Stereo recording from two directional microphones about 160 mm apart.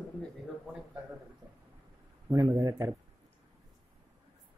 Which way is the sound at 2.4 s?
25° right (ahead or behind).